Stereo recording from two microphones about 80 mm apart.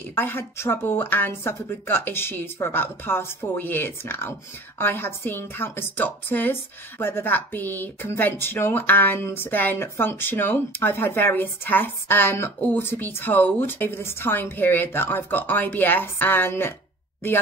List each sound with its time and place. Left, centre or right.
0.1 s a woman's voice: left